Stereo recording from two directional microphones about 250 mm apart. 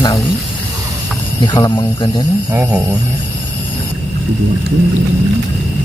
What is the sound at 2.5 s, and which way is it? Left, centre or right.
Speech, centre.